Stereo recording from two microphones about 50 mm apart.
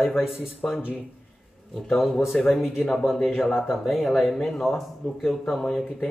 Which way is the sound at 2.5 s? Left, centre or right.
Centre.